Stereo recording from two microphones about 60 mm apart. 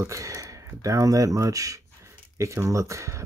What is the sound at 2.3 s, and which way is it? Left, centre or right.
Speech, right.